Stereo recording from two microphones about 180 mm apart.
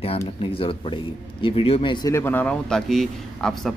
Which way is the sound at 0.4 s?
30° left (ahead or behind).